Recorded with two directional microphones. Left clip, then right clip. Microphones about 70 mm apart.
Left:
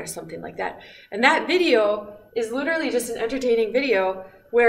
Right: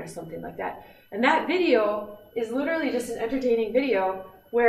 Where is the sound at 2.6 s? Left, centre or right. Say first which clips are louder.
Left 3 dB; left.